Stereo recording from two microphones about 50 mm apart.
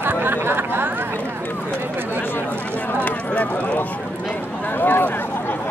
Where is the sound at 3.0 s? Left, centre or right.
Left.